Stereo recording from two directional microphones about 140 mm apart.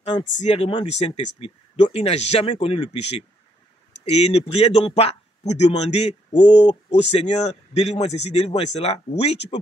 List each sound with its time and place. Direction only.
0.4 s speech: 45° left (ahead or behind)